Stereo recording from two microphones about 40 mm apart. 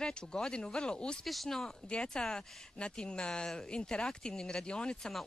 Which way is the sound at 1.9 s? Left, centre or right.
Centre.